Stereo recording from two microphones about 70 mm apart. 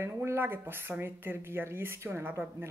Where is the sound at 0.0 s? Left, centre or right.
Right.